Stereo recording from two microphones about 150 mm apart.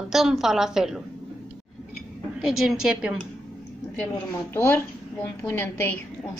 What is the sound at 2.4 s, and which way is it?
Speech, centre (ahead or behind).